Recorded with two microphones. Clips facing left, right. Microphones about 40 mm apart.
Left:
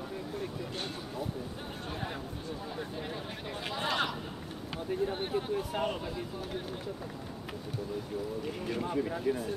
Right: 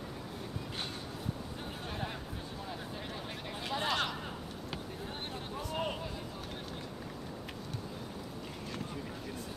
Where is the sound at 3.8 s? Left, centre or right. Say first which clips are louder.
Left 3 dB; centre.